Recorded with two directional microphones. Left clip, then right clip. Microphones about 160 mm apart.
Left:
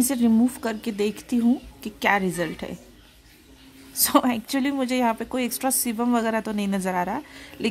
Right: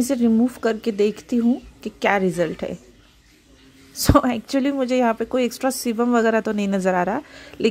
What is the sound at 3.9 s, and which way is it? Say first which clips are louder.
A woman's voice: right 3 dB; 15° right (ahead or behind).